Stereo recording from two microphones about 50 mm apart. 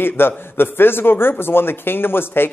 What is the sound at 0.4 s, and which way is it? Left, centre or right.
A man's voice, left.